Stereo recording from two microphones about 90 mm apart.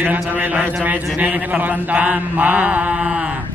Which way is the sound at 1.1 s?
15° right (ahead or behind).